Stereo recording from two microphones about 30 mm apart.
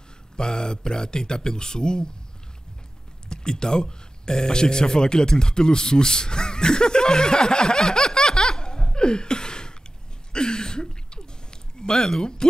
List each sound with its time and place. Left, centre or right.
0.4 s speech: left
3.3 s speech: left
10.3 s a sound: left
11.8 s speech: centre